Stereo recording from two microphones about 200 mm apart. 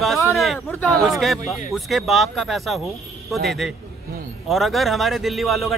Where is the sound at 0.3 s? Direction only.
Centre (ahead or behind).